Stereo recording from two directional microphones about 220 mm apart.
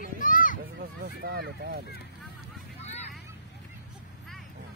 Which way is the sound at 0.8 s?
45° right (ahead or behind).